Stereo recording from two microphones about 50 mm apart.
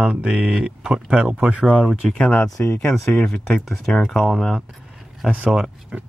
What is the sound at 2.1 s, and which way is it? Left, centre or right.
Speech, left.